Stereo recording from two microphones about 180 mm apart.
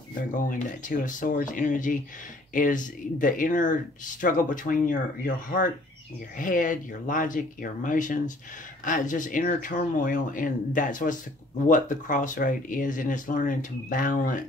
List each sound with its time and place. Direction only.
0.3 s speech: 45° left (ahead or behind)